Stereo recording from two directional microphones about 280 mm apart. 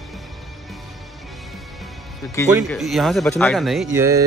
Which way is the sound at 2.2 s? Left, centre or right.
Centre.